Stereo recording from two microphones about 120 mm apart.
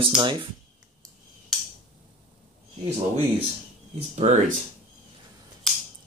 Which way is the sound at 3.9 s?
65° right (ahead or behind).